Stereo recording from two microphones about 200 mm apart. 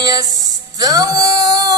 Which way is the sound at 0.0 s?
20° right (ahead or behind).